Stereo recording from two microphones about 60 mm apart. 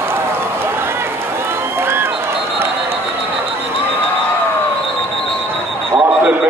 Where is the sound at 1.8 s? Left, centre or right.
Right.